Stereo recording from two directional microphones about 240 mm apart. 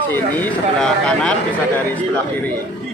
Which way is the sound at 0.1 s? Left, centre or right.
Centre.